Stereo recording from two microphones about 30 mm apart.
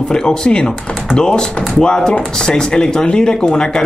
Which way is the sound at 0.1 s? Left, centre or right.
Left.